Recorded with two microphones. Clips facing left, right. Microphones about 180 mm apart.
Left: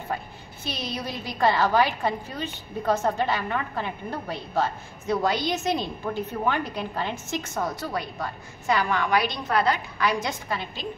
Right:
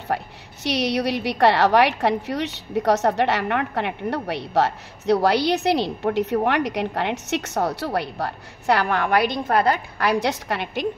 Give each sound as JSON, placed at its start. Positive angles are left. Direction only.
{"t": 0.1, "sound": "a woman's voice", "side_deg": -75}
{"t": 10.2, "sound": "a woman's voice", "side_deg": -75}